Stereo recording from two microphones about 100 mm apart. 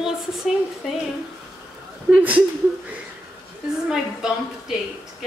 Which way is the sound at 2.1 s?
15° right (ahead or behind).